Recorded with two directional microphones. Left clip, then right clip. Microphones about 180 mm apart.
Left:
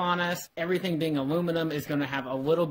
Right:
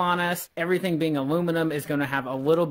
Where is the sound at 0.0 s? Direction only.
35° right (ahead or behind).